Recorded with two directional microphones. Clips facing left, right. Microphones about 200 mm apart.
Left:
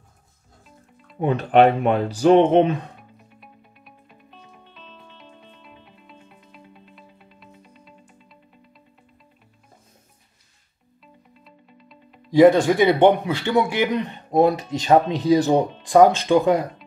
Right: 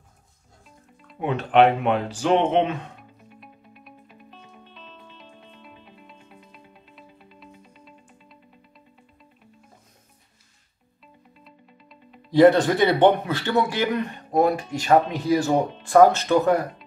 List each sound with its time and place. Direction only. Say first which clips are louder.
1.2 s speech: left 2 dB; 40° left (ahead or behind)
3.0 s music: right 1 dB; centre (ahead or behind)
11.4 s music: left 1 dB; centre (ahead or behind)
12.3 s a man's voice: left 2 dB; 10° left (ahead or behind)